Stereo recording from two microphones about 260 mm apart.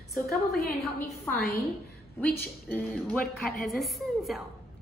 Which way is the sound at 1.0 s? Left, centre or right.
Centre.